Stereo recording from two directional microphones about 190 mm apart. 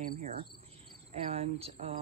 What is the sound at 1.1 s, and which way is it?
Speech, 30° right (ahead or behind).